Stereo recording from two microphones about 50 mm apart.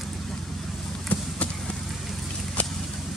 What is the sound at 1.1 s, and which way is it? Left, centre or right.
Basketball bounce, left.